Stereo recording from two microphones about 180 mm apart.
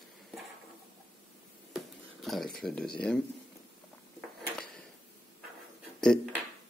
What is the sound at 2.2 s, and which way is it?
Speech, centre (ahead or behind).